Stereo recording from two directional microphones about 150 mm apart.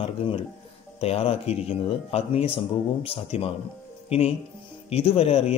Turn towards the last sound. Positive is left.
turn(degrees=40)  # may be behind; listen again after turning